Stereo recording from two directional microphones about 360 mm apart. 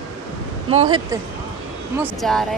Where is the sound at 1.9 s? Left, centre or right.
Centre.